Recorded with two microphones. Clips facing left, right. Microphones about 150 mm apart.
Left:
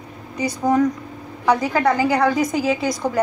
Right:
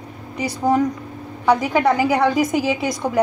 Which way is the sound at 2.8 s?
Centre (ahead or behind).